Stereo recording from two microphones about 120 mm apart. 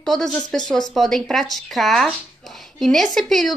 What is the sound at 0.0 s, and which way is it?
A woman's voice, 5° left (ahead or behind).